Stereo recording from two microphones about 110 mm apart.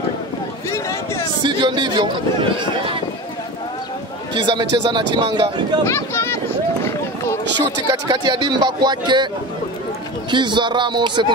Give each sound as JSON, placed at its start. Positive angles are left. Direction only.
{"t": 0.7, "sound": "a sound", "side_deg": 25}
{"t": 1.4, "sound": "speech", "side_deg": -45}
{"t": 4.4, "sound": "speech", "side_deg": -45}
{"t": 5.9, "sound": "a sound", "side_deg": 25}
{"t": 7.9, "sound": "speech", "side_deg": -40}
{"t": 10.3, "sound": "speech", "side_deg": -45}